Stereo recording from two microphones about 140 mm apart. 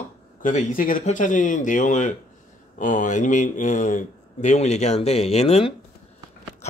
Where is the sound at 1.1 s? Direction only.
65° left (ahead or behind); by 5.7 s 45° left (ahead or behind).